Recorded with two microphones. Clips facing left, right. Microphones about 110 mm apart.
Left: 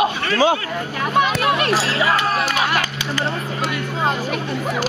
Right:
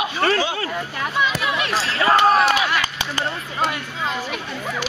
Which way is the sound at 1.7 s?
35° left (ahead or behind).